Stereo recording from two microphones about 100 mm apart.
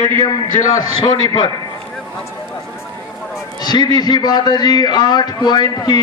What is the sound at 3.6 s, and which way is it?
A man's voice, 45° left (ahead or behind).